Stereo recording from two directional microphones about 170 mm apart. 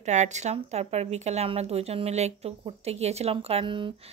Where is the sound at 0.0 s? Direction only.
45° right (ahead or behind).